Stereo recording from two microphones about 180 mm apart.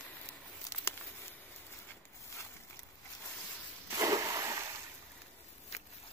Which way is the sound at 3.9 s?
20° right (ahead or behind).